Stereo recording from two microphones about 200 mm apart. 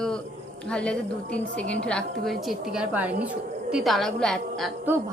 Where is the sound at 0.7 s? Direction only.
5° left (ahead or behind).